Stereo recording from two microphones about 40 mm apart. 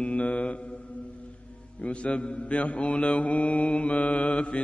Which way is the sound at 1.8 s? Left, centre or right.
Left.